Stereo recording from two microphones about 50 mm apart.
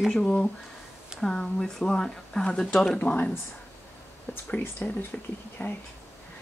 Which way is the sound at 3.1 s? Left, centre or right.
Left.